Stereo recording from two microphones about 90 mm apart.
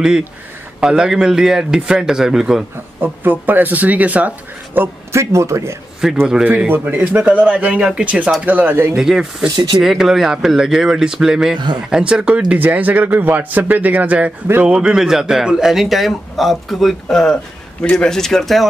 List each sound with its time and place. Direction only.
0.7 s speech: 10° right (ahead or behind)
3.0 s speech: 20° right (ahead or behind)
4.7 s a man's voice: 35° right (ahead or behind)
6.2 s speech: 10° right (ahead or behind)
6.7 s speech: 20° right (ahead or behind)
8.9 s speech: 5° right (ahead or behind)
11.5 s a man's voice: 55° right (ahead or behind)
11.9 s speech: 10° right (ahead or behind)